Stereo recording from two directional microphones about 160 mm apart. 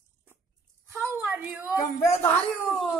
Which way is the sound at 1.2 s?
10° right (ahead or behind).